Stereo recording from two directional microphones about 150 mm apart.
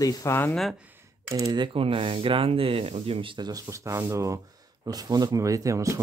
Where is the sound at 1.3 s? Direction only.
25° right (ahead or behind).